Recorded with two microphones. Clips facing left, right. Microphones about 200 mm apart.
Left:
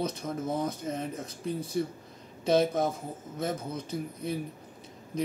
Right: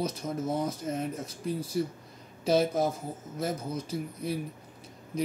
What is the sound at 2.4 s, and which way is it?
Speech, 5° right (ahead or behind).